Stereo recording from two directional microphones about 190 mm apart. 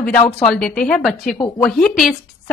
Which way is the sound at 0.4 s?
5° left (ahead or behind).